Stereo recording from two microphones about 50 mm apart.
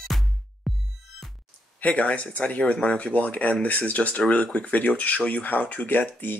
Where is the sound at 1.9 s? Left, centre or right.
Left.